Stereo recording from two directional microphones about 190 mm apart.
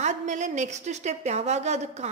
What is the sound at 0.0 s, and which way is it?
Speech, 40° right (ahead or behind).